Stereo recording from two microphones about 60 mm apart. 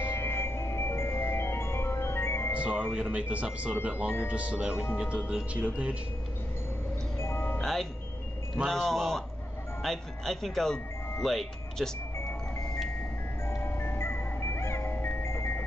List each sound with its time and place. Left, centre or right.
0.0 s music: left
2.9 s speech: centre
7.2 s music: left
7.6 s speech: centre
13.5 s music: left